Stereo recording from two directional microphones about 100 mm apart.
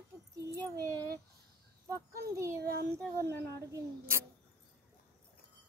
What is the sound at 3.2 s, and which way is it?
Speech, 25° left (ahead or behind).